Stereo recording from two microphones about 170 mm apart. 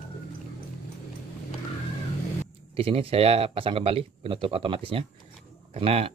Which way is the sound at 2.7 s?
35° right (ahead or behind).